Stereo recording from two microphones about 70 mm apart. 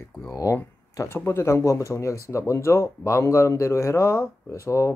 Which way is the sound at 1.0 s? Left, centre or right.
Left.